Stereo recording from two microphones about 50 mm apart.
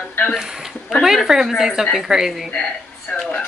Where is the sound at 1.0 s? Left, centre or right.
Centre.